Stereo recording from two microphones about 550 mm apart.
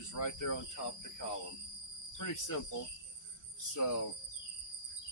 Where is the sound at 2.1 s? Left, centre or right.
Left.